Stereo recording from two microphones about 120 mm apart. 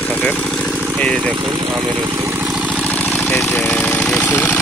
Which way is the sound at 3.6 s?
10° left (ahead or behind).